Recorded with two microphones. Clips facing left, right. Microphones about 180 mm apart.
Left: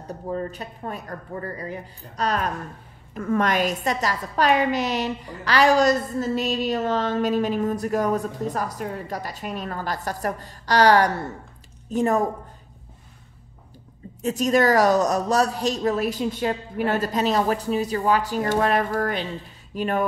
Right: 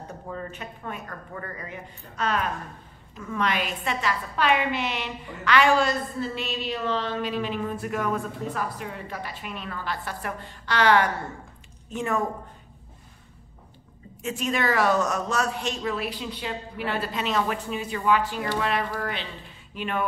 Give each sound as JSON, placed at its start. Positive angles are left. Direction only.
{"t": 0.3, "sound": "a woman's voice", "side_deg": 35}
{"t": 3.2, "sound": "a woman's voice", "side_deg": 50}
{"t": 14.2, "sound": "a woman's voice", "side_deg": 40}